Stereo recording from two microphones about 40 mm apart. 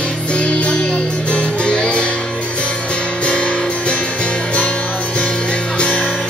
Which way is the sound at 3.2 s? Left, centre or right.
Left.